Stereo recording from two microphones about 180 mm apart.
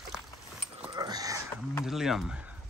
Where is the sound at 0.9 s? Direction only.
20° right (ahead or behind).